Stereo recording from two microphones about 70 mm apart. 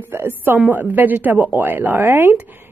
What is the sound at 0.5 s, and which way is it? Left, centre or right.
A woman's voice, right.